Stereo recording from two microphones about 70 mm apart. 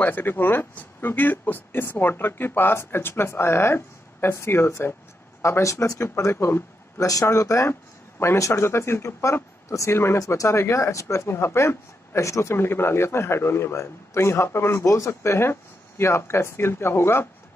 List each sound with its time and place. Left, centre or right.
0.0 s speech: left
7.0 s speech: left
10.1 s speech: left